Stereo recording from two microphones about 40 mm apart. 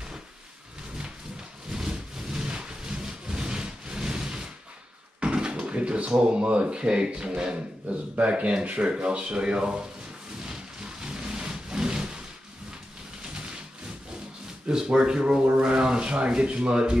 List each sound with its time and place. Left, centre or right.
1.7 s thunder: centre
5.2 s speech: right
10.4 s a sound: centre
14.7 s speech: centre